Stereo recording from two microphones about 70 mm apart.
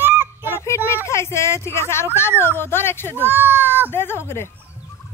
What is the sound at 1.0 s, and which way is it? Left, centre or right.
A woman's voice, left.